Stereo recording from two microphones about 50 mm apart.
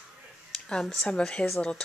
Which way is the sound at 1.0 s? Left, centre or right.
Centre.